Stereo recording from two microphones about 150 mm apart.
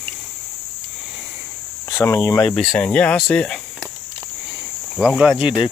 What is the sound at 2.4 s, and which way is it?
Speech, 5° left (ahead or behind).